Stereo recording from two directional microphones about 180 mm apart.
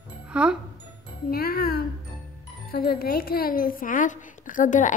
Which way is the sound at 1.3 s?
55° left (ahead or behind).